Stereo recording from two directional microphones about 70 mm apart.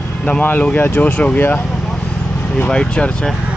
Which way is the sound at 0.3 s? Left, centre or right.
Left.